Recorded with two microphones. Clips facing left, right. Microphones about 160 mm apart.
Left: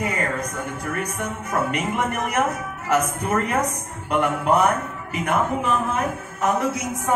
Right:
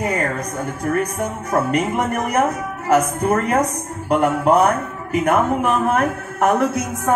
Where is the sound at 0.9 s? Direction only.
40° right (ahead or behind).